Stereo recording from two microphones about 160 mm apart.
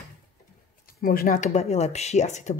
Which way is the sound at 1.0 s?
60° left (ahead or behind).